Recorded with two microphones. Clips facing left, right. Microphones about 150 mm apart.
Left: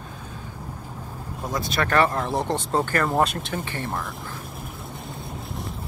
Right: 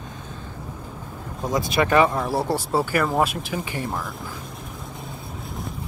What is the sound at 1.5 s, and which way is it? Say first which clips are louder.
Speech: right 4 dB; 10° right (ahead or behind).